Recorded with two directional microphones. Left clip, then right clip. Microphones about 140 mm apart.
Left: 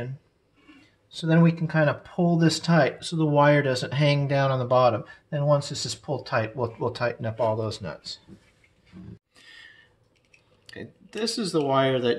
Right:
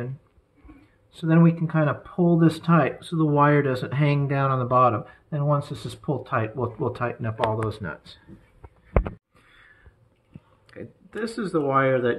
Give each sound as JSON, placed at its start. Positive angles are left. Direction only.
{"t": 1.1, "sound": "speech", "side_deg": 50}
{"t": 11.1, "sound": "speech", "side_deg": 90}